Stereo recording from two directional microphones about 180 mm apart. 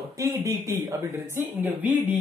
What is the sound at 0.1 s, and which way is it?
Speech, 15° right (ahead or behind).